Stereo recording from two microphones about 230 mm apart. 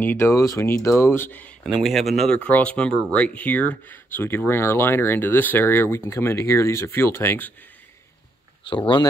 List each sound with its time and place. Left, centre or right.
0.0 s speech: centre
8.6 s speech: left